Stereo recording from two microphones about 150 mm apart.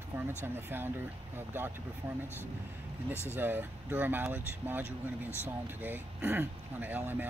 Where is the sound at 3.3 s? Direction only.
15° right (ahead or behind).